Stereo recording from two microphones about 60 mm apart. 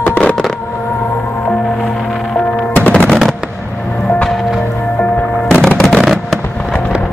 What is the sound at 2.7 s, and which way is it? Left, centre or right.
Music, left.